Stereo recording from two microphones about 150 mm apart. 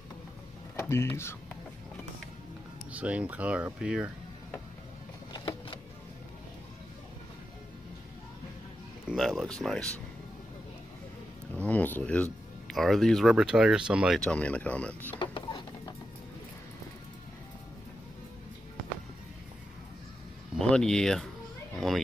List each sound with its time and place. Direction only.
0.7 s speech: 15° left (ahead or behind)
2.9 s speech: 10° right (ahead or behind)
5.3 s power windows: 30° left (ahead or behind)
9.1 s speech: centre (ahead or behind)
11.6 s speech: 10° left (ahead or behind)
15.1 s a sound: 35° left (ahead or behind)
20.5 s speech: 5° left (ahead or behind)